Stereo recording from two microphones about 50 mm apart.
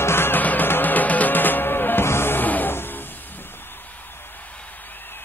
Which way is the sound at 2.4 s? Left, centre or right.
Left.